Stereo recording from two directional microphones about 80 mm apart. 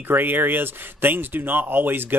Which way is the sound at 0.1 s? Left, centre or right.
Right.